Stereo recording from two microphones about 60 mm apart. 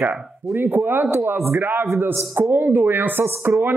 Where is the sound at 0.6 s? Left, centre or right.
Right.